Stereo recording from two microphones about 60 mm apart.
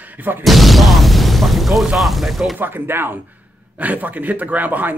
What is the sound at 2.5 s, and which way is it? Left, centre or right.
Speech, right.